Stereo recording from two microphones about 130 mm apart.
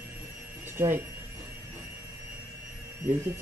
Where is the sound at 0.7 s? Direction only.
15° right (ahead or behind).